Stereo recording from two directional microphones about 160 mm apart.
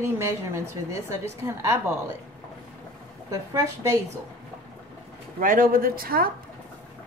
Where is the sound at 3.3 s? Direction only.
20° right (ahead or behind).